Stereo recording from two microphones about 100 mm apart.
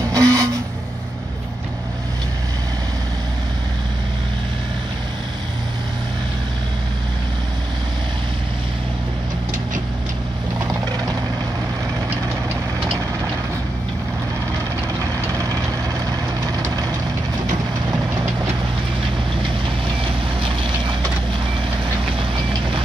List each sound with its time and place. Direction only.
0.1 s vehicle: 35° right (ahead or behind)